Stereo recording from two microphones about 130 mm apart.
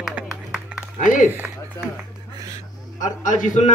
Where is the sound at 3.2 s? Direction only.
80° left.